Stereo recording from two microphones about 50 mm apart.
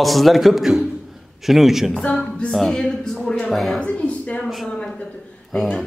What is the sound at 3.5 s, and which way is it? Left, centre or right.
Speech, centre.